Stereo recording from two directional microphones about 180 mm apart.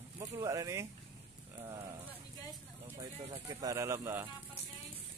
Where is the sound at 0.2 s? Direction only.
20° right (ahead or behind).